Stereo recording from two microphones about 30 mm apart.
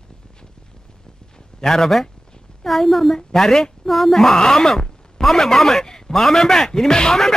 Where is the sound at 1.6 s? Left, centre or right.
Centre.